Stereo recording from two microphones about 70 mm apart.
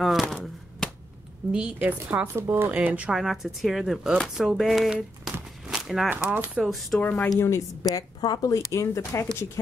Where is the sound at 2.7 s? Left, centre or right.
Centre.